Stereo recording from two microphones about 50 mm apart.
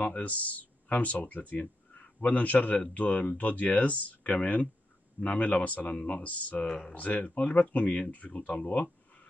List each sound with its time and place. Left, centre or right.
0.0 s speech: left